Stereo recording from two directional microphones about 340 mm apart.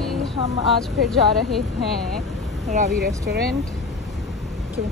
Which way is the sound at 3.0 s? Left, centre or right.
Right.